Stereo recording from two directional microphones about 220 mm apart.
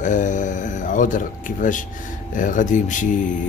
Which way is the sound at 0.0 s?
35° left (ahead or behind).